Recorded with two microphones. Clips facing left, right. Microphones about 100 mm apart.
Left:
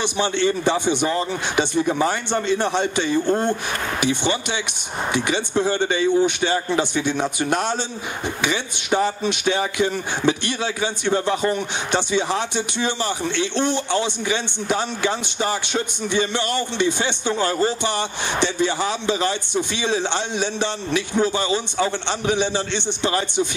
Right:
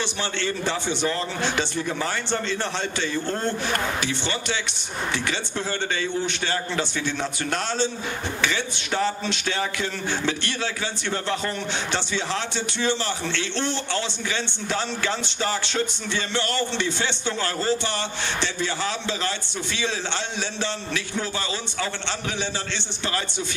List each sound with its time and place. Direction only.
0.0 s a man's voice: 15° left (ahead or behind)